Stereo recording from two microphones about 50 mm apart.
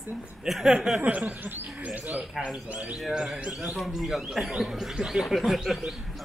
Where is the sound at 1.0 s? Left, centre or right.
Right.